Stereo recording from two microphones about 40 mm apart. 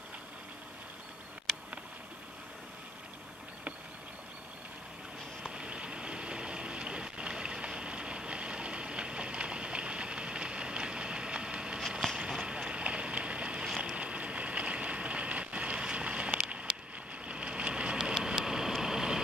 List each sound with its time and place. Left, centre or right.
5.5 s vehicle: right
12.2 s boat: right
13.7 s a sound: centre
13.9 s vehicle: right
17.3 s vehicle: right; by 19.2 s centre